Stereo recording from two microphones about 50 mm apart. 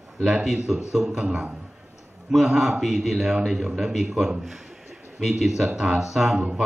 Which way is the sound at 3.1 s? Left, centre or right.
Centre.